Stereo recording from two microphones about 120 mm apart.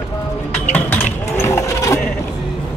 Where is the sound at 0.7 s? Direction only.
15° left (ahead or behind).